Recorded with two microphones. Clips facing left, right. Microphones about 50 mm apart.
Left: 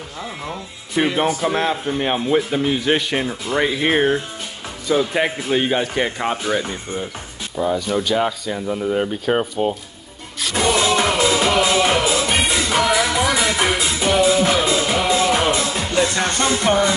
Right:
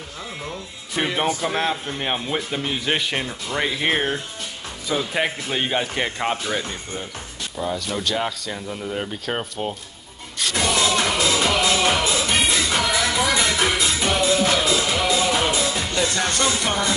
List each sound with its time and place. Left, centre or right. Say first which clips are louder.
1.0 s speech: left 4 dB; centre
10.5 s music: left 4 dB; centre
16.3 s speech: left 8 dB; centre